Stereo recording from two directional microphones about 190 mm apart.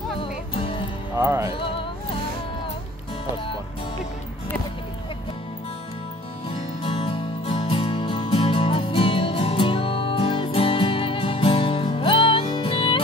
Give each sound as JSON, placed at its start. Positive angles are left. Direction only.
{"t": 0.2, "sound": "music", "side_deg": 30}
{"t": 1.1, "sound": "speech", "side_deg": -15}
{"t": 6.8, "sound": "music", "side_deg": 30}